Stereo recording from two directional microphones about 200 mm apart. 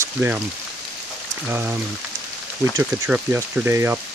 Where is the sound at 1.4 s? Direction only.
10° right (ahead or behind).